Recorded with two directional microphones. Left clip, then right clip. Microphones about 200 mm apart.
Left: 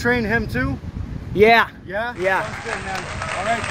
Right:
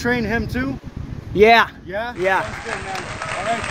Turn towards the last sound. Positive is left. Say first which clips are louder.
# even
turn(degrees=0)  # may be behind; listen again after turning